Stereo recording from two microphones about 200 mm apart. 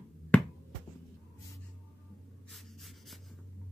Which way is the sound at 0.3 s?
5° left (ahead or behind).